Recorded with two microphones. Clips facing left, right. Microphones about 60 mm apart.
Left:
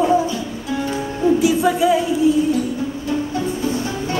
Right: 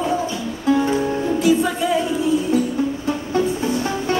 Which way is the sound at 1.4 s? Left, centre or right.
Centre.